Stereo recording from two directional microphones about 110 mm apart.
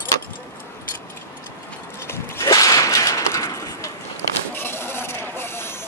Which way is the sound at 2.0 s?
25° left (ahead or behind).